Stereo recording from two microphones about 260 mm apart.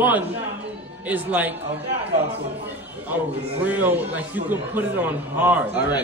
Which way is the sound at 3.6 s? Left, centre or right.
Centre.